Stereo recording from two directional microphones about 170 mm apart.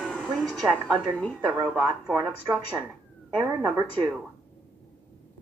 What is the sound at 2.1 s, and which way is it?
Speech, 20° right (ahead or behind).